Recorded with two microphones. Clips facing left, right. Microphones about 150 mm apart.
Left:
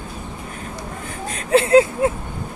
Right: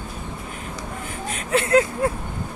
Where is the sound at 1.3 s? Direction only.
30° left (ahead or behind).